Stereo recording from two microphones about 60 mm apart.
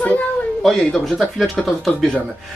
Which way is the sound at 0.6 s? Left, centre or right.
Centre.